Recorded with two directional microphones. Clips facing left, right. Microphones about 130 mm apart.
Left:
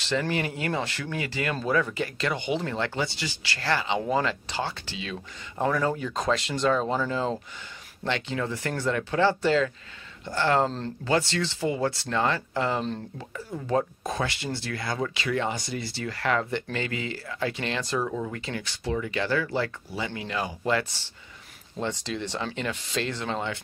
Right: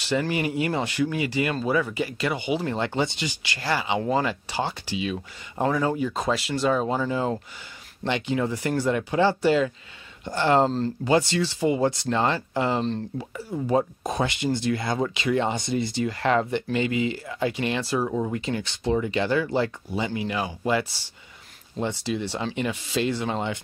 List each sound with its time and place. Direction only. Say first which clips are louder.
0.0 s speech: right 2 dB; 10° right (ahead or behind)
2.6 s speech: right 3 dB; 20° right (ahead or behind)